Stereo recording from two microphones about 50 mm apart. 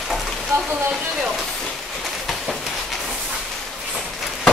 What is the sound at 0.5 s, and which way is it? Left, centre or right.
Rain, right.